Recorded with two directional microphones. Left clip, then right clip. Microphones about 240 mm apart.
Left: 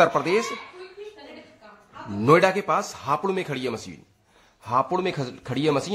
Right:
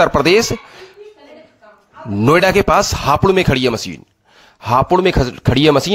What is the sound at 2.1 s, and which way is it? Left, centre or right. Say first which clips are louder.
Speech: right 7 dB; right.